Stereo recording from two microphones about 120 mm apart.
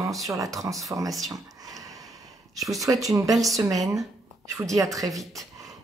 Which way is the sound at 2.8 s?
30° right (ahead or behind).